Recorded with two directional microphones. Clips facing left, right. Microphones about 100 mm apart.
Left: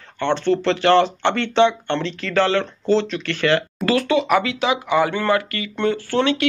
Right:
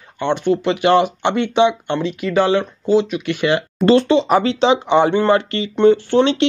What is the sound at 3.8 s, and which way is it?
Speech, 25° right (ahead or behind).